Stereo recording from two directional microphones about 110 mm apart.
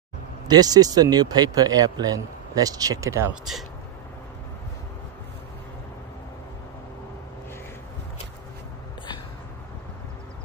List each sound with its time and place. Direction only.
0.5 s speech: 35° right (ahead or behind)